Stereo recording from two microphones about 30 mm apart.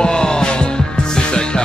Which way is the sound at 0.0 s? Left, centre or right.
Left.